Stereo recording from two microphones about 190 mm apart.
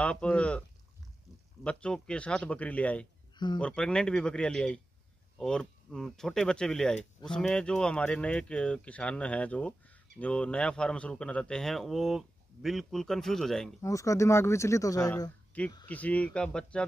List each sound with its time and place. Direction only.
0.0 s a man's voice: 5° left (ahead or behind)
13.7 s speech: 15° left (ahead or behind)
15.5 s speech: 10° left (ahead or behind)